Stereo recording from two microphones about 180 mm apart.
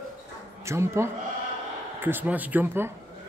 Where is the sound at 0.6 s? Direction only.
15° right (ahead or behind).